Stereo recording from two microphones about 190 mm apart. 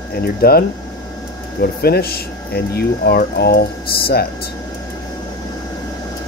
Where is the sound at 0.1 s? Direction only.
55° left (ahead or behind).